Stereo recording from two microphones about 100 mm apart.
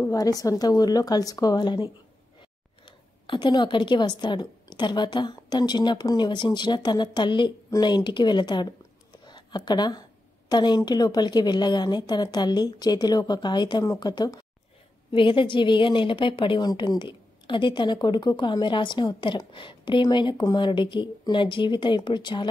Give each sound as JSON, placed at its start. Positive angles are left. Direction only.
{"t": 0.1, "sound": "speech", "side_deg": 35}
{"t": 2.8, "sound": "a woman's voice", "side_deg": 50}
{"t": 9.2, "sound": "a sound", "side_deg": 50}
{"t": 10.5, "sound": "a woman's voice", "side_deg": 45}
{"t": 15.0, "sound": "a woman's voice", "side_deg": 55}
{"t": 17.0, "sound": "a woman's voice", "side_deg": 55}